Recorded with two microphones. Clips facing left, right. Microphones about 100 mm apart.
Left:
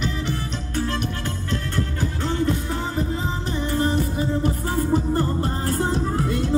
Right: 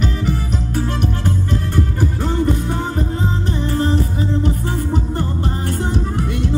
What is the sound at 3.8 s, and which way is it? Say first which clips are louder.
Music: right 2 dB; 30° right (ahead or behind).